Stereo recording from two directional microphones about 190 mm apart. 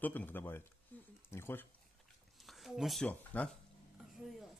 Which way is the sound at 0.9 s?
10° left (ahead or behind).